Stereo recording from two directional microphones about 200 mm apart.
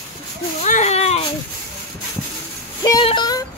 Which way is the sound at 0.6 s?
35° left (ahead or behind).